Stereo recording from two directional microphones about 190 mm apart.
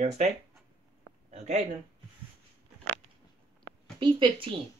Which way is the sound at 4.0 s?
25° right (ahead or behind).